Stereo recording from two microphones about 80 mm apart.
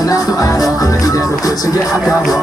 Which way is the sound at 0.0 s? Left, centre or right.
Left.